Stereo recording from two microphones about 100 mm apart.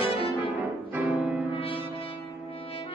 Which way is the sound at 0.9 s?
15° right (ahead or behind).